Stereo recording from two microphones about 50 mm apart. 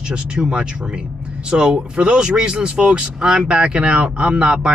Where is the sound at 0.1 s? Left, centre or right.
Centre.